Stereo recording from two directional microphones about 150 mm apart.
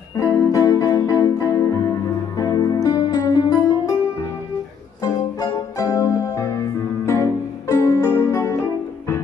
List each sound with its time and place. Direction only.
0.2 s music: 20° left (ahead or behind)
5.0 s music: 20° left (ahead or behind)